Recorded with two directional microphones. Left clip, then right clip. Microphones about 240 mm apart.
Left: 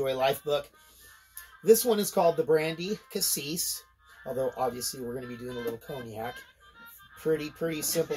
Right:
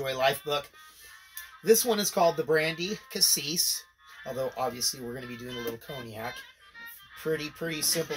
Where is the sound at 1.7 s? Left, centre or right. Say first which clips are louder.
Left 1 dB; centre.